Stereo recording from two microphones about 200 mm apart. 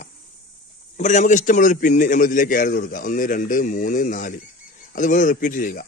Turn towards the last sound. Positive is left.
turn(degrees=40)  # may be behind; listen again after turning